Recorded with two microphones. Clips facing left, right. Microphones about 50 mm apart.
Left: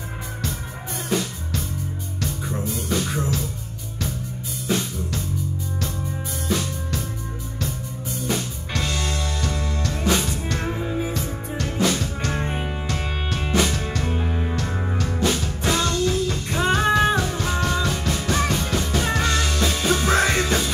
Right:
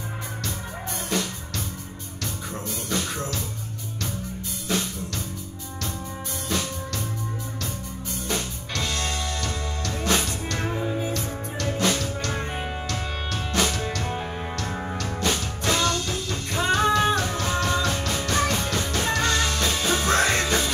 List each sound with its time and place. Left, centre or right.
2.5 s music: centre
4.6 s music: centre
8.3 s music: centre
12.2 s music: centre